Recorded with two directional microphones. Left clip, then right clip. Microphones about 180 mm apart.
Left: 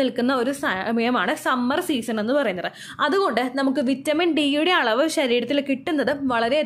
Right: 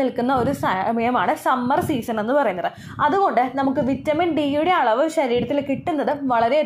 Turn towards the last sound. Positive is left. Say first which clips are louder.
# right 3 dB
turn(degrees=30)  # may be behind; listen again after turning